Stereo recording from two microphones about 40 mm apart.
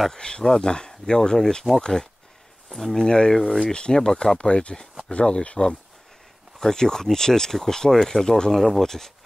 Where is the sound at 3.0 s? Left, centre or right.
Centre.